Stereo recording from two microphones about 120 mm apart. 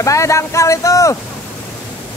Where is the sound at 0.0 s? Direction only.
25° left (ahead or behind).